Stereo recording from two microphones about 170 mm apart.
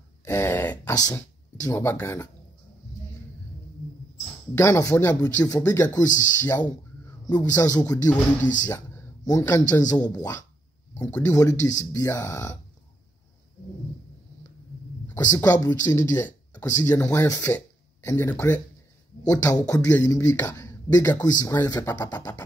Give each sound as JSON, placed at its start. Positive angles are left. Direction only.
{"t": 0.2, "sound": "throat clearing", "side_deg": 15}
{"t": 1.1, "sound": "speech", "side_deg": 15}
{"t": 4.6, "sound": "speech", "side_deg": 15}
{"t": 15.1, "sound": "speech", "side_deg": 20}